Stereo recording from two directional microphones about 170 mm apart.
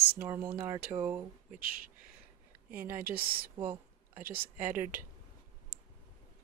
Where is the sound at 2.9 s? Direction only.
60° right (ahead or behind).